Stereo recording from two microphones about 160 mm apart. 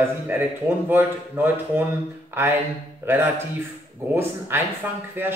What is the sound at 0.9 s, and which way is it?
Speech, 15° right (ahead or behind).